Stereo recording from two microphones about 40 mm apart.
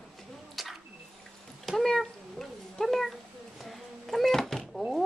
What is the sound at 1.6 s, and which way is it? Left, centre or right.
Cat, centre.